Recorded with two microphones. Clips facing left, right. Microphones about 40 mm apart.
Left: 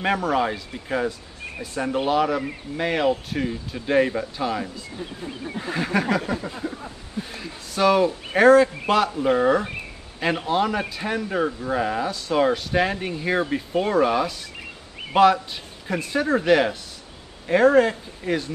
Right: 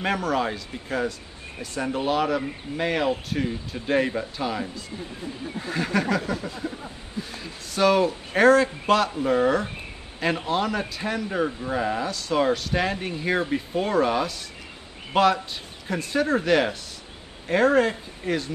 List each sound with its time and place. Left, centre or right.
0.0 s a man's voice: centre
5.2 s speech: left
5.8 s speech: centre
6.3 s a sound: left
7.3 s a man's voice: centre